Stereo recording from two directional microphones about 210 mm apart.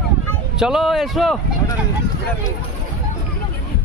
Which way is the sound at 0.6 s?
Centre (ahead or behind).